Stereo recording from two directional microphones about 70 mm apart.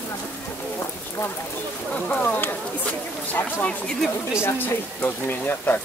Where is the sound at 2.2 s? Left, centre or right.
Left.